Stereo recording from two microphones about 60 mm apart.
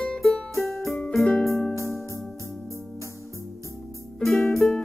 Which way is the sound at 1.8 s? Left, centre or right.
Left.